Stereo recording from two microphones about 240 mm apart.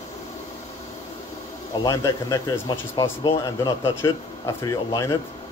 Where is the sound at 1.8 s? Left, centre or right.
Centre.